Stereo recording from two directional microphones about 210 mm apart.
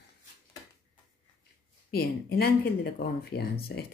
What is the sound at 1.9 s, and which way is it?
Speech, 45° left (ahead or behind).